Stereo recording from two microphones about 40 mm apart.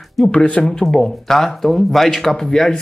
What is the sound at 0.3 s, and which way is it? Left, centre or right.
Speech, left.